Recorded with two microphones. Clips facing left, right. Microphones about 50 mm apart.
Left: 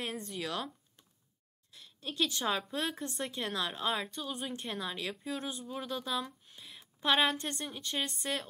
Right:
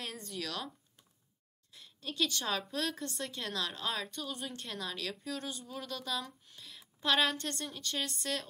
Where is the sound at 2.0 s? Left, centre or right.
Centre.